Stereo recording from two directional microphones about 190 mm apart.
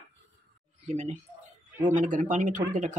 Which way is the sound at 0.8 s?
35° right (ahead or behind).